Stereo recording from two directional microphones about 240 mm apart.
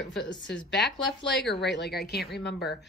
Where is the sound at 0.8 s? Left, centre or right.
Left.